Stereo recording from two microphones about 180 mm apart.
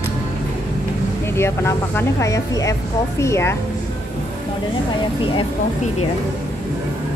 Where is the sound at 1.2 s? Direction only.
15° left (ahead or behind).